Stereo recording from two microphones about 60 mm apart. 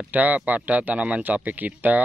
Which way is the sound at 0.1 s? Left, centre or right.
Right.